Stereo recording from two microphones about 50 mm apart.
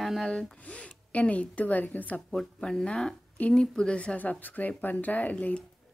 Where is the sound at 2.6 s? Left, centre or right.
Centre.